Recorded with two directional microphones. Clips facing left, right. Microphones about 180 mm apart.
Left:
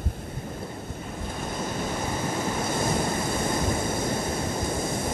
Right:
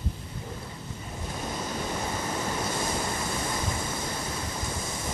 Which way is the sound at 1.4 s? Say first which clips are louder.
Left 2 dB; 50° left (ahead or behind).